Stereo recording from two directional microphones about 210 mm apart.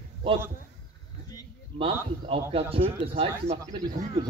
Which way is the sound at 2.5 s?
25° right (ahead or behind).